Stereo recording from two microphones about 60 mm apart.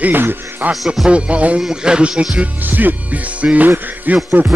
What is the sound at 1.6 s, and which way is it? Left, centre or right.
Speech, centre.